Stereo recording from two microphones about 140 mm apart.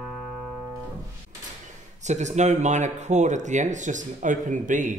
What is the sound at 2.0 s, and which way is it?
Speech, 55° right (ahead or behind).